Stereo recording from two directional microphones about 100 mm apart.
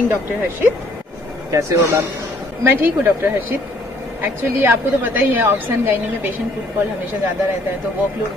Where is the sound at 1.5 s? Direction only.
30° right (ahead or behind).